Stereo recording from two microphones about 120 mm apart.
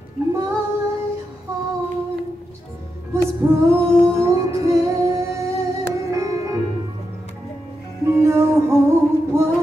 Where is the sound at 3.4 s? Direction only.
20° right (ahead or behind).